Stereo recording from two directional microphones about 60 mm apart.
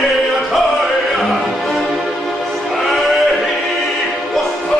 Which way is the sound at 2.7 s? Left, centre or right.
Centre.